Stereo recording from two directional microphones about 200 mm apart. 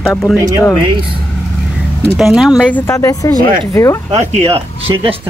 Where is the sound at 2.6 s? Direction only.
10° left (ahead or behind).